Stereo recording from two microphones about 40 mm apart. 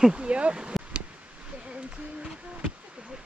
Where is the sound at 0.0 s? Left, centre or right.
Right.